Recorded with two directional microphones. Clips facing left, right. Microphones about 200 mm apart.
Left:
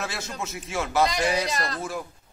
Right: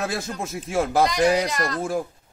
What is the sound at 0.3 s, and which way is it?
Speech, 50° right (ahead or behind).